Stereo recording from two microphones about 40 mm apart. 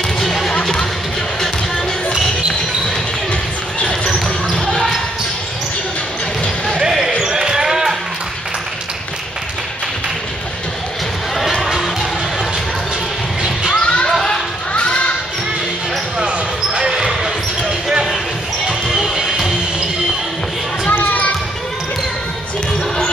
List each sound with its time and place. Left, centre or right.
0.2 s music: centre
6.8 s basketball bounce: centre
11.7 s music: centre
13.7 s music: left
14.7 s basketball bounce: left
16.7 s basketball bounce: centre
18.7 s basketball bounce: centre
19.1 s music: centre
21.0 s basketball bounce: left